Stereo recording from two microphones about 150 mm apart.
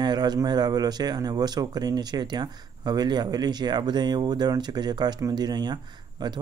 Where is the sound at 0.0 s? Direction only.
30° right (ahead or behind).